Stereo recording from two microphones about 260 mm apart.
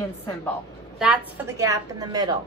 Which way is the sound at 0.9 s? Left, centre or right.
Centre.